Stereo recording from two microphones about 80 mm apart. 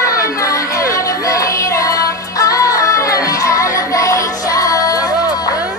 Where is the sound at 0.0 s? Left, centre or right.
Left.